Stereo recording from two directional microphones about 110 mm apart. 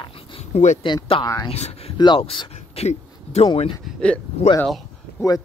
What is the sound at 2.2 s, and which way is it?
Speech, 60° left (ahead or behind).